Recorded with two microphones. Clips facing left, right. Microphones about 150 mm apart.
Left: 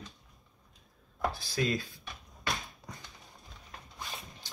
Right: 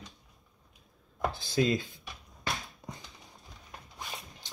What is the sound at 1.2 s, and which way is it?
Speech, 25° right (ahead or behind).